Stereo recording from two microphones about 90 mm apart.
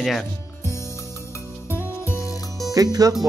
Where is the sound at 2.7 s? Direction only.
40° right (ahead or behind).